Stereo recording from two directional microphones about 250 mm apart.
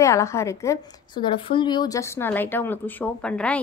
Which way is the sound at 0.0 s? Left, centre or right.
Centre.